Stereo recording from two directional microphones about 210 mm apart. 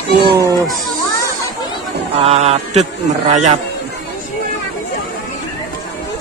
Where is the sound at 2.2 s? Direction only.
30° right (ahead or behind).